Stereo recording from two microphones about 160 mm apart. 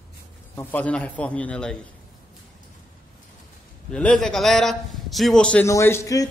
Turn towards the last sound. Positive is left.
turn(degrees=20)  # may be behind; listen again after turning